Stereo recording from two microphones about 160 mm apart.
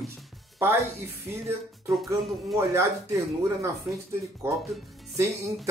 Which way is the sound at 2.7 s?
15° right (ahead or behind).